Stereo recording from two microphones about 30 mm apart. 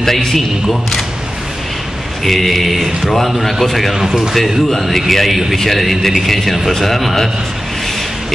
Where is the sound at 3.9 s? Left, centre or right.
Centre.